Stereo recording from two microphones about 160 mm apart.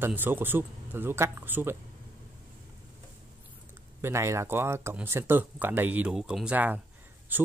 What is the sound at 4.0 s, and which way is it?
A man's voice, 15° right (ahead or behind).